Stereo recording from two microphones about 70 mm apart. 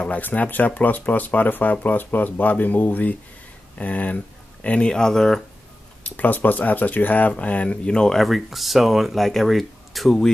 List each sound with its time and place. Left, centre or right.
0.0 s speech: left; by 5.4 s centre
6.0 s speech: left; by 10.3 s centre